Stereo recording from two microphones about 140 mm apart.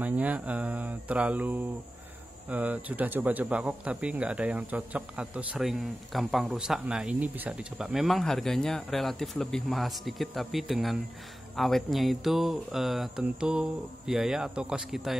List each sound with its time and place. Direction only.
0.0 s mantra: 10° right (ahead or behind)
2.5 s speech: 10° right (ahead or behind)